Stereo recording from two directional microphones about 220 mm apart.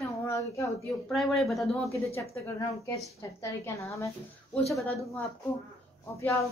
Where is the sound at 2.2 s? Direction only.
15° left (ahead or behind).